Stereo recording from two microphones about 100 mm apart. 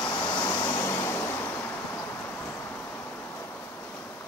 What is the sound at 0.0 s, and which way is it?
Vehicle, 40° left (ahead or behind).